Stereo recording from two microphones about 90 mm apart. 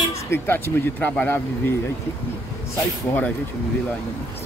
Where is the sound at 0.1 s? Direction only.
25° left (ahead or behind).